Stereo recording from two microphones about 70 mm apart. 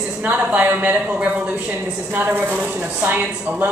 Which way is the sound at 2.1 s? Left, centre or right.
Right.